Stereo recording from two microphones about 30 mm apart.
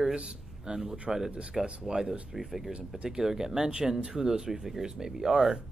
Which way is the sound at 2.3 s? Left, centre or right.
Centre.